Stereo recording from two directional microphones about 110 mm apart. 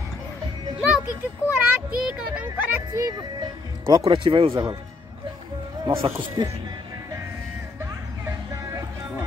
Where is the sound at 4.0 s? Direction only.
50° right (ahead or behind).